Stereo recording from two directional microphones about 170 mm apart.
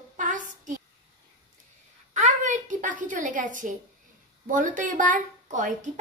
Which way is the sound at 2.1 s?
45° right (ahead or behind).